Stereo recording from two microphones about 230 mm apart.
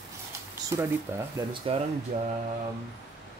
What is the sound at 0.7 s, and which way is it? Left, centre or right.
Speech, centre.